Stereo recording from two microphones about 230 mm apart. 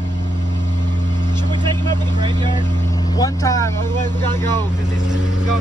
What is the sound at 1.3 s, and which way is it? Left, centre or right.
Vehicle, centre.